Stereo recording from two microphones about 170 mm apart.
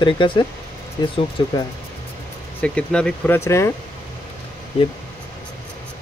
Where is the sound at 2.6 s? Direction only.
5° left (ahead or behind).